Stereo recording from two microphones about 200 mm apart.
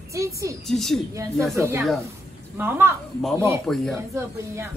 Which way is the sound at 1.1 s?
15° right (ahead or behind).